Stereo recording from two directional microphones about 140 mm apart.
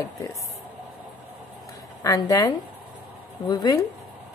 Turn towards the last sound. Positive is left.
turn(degrees=30)  # may be behind; listen again after turning